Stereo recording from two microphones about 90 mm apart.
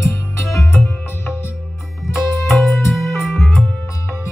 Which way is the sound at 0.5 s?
30° left (ahead or behind).